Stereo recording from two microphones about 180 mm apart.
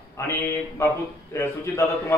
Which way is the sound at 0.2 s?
15° left (ahead or behind).